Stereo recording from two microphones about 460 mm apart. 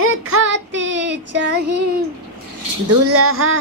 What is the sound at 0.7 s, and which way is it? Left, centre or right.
Speech, right.